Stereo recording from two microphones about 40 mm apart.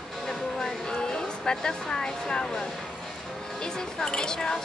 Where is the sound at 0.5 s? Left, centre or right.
Centre.